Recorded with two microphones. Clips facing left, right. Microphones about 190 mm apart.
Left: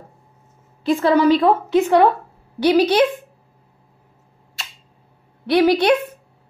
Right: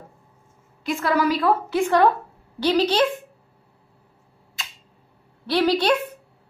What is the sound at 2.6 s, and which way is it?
Speech, 10° left (ahead or behind).